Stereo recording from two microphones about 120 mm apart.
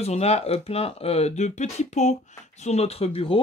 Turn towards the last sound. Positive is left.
turn(degrees=55)  # may be behind; listen again after turning